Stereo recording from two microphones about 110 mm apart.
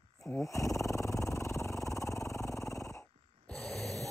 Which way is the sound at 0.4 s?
30° left (ahead or behind).